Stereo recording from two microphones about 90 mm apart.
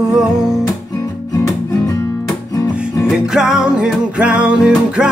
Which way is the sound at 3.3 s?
5° right (ahead or behind).